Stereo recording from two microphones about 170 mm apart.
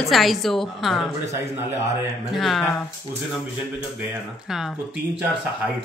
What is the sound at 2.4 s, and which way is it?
Speech, centre (ahead or behind).